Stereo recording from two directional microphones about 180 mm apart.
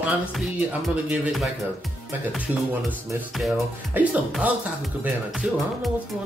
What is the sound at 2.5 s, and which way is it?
Speech, 10° right (ahead or behind).